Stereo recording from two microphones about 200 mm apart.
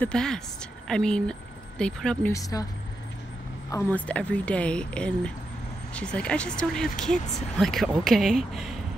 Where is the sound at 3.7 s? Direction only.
10° left (ahead or behind).